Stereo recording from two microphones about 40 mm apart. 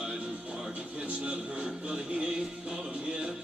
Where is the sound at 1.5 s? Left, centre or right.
Right.